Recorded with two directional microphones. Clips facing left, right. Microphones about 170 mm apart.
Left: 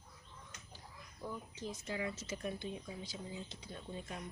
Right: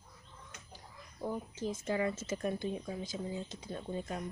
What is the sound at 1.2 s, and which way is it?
Speech, 45° right (ahead or behind).